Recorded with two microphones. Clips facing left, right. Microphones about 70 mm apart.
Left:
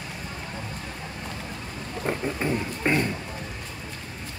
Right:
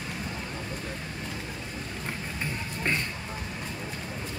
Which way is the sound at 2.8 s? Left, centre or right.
Centre.